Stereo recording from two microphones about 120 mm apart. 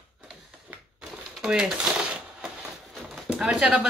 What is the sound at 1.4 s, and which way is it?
Speech, 5° right (ahead or behind).